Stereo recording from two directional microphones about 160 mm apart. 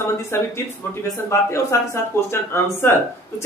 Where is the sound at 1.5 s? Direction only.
20° left (ahead or behind).